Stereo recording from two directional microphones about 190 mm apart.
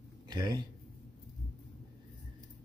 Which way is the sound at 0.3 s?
20° right (ahead or behind).